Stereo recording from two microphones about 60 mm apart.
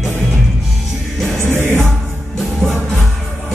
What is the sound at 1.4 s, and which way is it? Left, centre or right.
Music, right.